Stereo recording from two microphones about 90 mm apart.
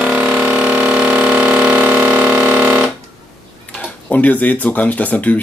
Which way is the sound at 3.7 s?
15° left (ahead or behind).